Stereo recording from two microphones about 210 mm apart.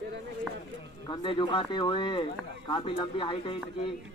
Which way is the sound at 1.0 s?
20° left (ahead or behind).